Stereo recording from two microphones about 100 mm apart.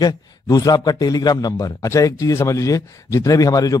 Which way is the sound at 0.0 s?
40° left (ahead or behind).